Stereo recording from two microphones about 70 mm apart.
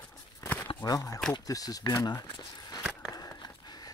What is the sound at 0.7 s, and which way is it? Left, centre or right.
Speech, left.